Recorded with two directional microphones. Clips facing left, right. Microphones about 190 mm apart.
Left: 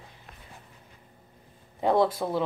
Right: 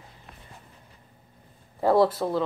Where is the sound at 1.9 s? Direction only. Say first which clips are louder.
Right 3 dB; 5° right (ahead or behind).